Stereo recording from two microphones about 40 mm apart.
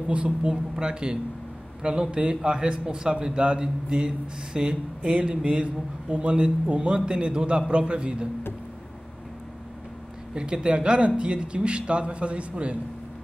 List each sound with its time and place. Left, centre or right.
0.1 s speech: right
10.3 s speech: right